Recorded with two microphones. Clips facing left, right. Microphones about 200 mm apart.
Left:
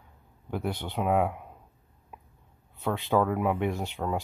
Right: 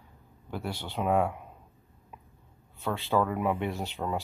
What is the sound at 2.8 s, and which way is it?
Speech, 15° left (ahead or behind).